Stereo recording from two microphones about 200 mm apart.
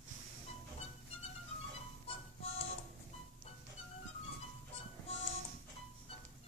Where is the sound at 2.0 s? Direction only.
30° left (ahead or behind).